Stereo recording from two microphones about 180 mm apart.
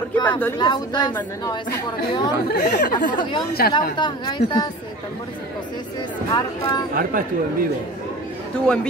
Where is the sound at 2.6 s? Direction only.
55° left (ahead or behind).